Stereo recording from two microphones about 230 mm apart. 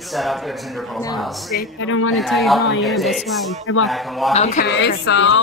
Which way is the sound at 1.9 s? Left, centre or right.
Left.